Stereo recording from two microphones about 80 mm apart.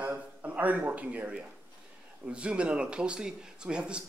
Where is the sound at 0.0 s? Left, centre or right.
Right.